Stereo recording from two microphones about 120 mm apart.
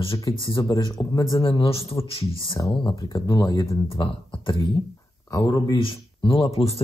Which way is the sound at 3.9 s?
45° left (ahead or behind).